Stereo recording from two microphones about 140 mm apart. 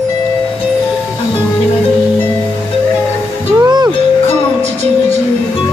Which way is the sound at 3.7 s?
30° right (ahead or behind).